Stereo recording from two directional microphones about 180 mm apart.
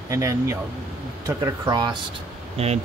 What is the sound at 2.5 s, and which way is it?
Speech, 35° right (ahead or behind).